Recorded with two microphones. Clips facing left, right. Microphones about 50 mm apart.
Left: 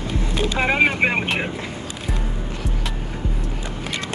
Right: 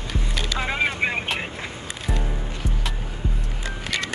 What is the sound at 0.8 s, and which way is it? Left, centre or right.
Vehicle, left.